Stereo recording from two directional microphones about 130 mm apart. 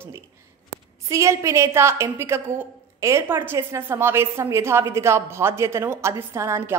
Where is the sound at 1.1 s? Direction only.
25° right (ahead or behind).